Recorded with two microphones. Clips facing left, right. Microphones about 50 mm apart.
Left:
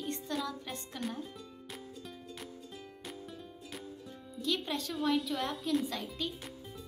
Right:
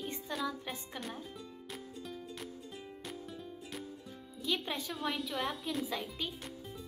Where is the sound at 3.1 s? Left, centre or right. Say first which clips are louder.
Even; centre.